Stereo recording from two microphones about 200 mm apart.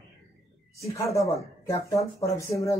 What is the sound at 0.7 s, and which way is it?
Speech, 15° left (ahead or behind).